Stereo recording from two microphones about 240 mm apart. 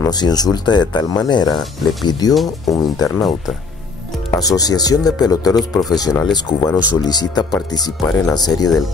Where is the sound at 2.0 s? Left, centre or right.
Centre.